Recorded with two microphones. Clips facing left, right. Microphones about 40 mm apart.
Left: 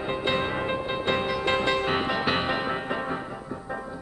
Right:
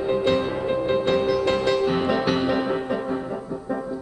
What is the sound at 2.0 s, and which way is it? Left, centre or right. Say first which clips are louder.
Music: right 4 dB; centre.